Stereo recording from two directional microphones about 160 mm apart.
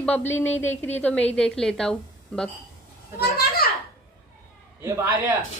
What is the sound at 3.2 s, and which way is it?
Children playing, 75° left (ahead or behind).